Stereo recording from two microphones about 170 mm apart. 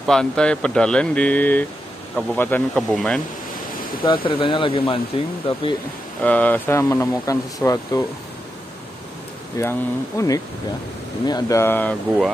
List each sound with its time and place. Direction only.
0.0 s speech: 5° left (ahead or behind)
4.0 s speech: 30° left (ahead or behind)
6.2 s speech: 10° left (ahead or behind)
9.6 s speech: 15° left (ahead or behind)